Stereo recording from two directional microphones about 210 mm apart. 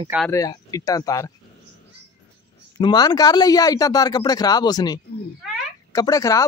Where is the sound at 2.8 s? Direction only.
20° left (ahead or behind).